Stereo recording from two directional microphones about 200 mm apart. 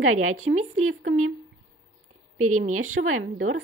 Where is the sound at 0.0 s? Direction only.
90° right.